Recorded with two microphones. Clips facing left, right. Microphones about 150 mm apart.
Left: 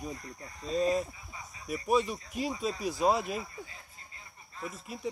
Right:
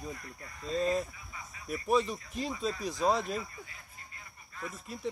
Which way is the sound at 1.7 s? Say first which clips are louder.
Left 1 dB; 5° left (ahead or behind).